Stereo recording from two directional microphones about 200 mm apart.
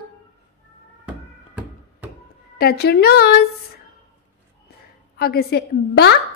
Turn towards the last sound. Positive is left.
turn(degrees=55)  # may be behind; listen again after turning